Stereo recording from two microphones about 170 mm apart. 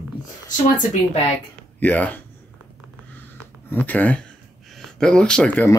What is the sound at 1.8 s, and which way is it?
Speech, 10° left (ahead or behind).